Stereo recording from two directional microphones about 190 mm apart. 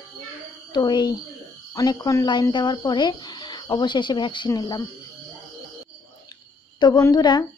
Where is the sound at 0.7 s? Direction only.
25° left (ahead or behind).